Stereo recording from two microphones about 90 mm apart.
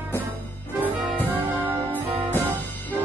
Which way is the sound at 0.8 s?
20° left (ahead or behind).